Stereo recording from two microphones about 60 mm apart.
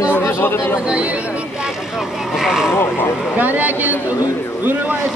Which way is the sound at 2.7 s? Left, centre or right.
Left.